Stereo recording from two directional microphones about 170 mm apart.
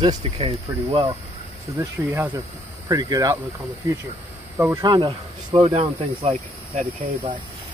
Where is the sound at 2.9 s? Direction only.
20° right (ahead or behind).